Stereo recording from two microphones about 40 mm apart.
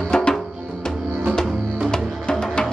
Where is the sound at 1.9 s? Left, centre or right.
Centre.